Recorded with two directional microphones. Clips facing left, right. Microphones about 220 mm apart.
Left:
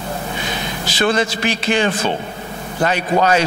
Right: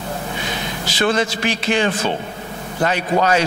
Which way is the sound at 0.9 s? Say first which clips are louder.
Left 1 dB; 15° left (ahead or behind).